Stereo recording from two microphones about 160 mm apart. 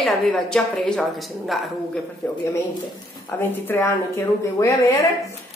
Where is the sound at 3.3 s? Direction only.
15° left (ahead or behind).